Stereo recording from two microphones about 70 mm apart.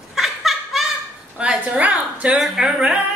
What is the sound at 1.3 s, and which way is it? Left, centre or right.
A woman's voice, centre.